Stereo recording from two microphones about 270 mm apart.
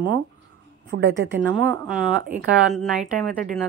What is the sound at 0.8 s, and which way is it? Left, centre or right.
Speech, right.